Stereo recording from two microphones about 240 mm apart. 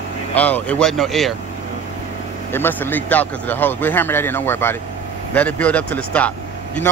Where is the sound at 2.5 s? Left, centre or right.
Centre.